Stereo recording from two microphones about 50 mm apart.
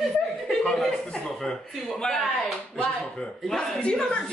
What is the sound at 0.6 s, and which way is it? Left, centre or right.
Speech, centre.